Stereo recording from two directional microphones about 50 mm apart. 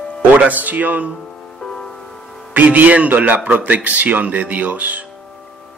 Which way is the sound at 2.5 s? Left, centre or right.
Right.